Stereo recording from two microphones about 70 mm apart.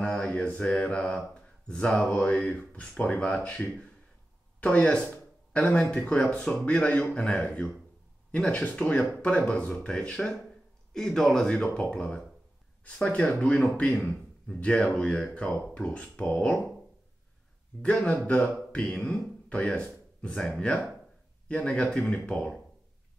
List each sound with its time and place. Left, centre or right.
0.0 s a sound: centre
0.6 s speech: centre
17.8 s speech: centre